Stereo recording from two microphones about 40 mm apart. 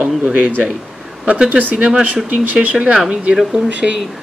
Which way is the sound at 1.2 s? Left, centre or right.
Right.